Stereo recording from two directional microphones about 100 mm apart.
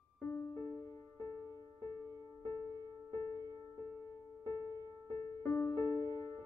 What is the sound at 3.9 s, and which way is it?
Music, 30° left (ahead or behind).